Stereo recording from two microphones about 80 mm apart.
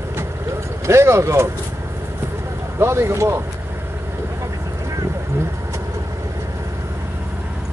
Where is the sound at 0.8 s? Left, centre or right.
Right.